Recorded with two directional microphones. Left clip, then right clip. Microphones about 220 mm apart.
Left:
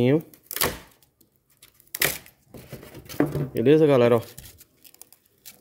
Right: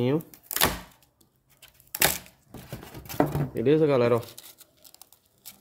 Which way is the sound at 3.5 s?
25° left (ahead or behind).